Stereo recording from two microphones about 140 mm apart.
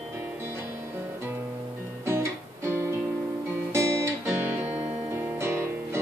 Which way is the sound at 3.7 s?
20° right (ahead or behind).